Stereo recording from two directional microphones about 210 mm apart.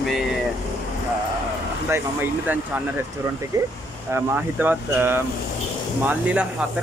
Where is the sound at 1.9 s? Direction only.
10° right (ahead or behind).